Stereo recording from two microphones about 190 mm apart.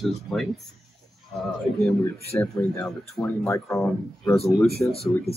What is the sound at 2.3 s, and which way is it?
Speech, 15° left (ahead or behind).